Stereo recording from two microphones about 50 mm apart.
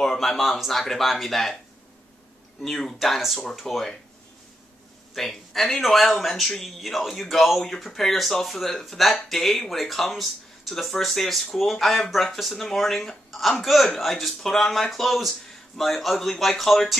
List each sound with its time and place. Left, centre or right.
0.0 s speech: centre
2.6 s speech: centre
5.1 s speech: centre